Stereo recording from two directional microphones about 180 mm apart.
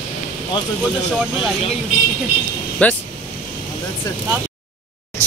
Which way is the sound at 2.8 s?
10° left (ahead or behind).